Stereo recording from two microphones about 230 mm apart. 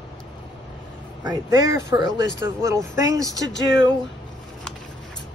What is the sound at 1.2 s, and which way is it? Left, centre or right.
Speech, centre.